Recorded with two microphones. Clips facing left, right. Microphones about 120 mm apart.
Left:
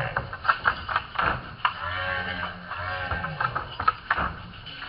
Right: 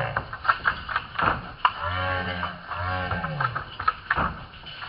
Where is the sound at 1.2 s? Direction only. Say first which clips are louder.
Right 3 dB; 25° right (ahead or behind).